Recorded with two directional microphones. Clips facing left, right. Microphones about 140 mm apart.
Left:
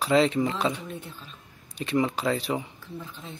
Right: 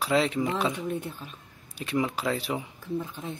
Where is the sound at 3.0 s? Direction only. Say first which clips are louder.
Right 5 dB; 50° right (ahead or behind).